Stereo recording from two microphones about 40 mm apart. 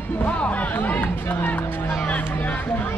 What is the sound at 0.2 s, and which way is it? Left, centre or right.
Music, left.